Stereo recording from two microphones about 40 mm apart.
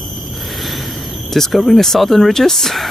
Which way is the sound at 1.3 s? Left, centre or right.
Centre.